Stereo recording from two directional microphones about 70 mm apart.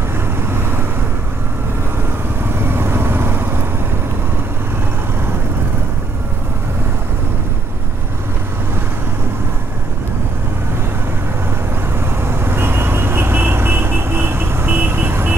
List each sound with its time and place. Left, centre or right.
2.6 s vehicle: right
12.2 s vehicle: right